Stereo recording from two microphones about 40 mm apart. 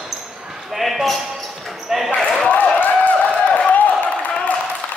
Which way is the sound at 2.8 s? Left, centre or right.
Left.